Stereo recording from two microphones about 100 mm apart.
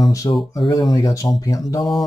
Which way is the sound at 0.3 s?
40° left (ahead or behind).